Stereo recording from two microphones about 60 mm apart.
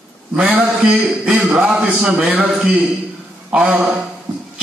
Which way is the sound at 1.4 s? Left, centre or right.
Centre.